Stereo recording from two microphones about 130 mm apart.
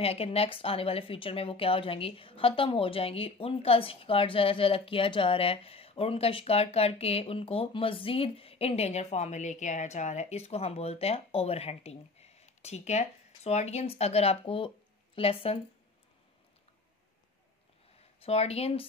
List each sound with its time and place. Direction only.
0.0 s speech: 50° left (ahead or behind)
18.2 s speech: 50° left (ahead or behind)